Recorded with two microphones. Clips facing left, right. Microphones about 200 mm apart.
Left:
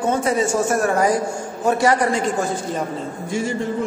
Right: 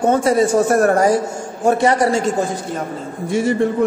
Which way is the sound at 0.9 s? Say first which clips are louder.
Right 4 dB; 35° right (ahead or behind).